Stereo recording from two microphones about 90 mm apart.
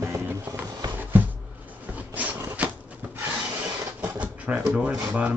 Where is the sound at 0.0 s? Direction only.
30° right (ahead or behind).